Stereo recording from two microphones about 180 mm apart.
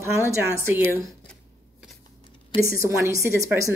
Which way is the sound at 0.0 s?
15° right (ahead or behind).